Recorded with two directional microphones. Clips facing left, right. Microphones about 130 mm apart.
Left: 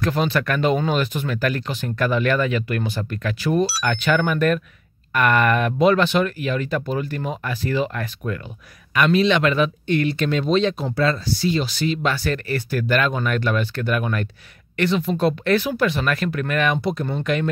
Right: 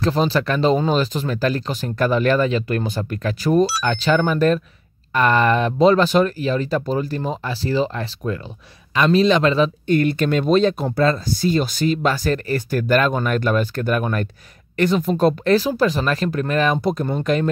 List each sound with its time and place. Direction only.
0.0 s speech: 30° right (ahead or behind)
16.8 s speech: 45° right (ahead or behind)